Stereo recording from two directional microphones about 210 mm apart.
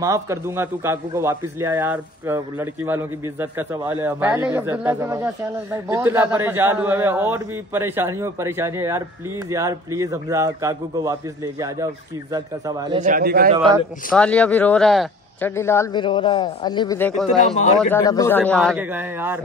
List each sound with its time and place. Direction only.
0.0 s a man's voice: 15° right (ahead or behind)
13.0 s a man's voice: 45° right (ahead or behind)
13.6 s a man's voice: 20° right (ahead or behind)
14.1 s speech: 5° left (ahead or behind)
15.5 s a man's voice: 10° left (ahead or behind)
17.0 s speech: centre (ahead or behind)
18.0 s a man's voice: 15° left (ahead or behind)
18.8 s a man's voice: 10° right (ahead or behind)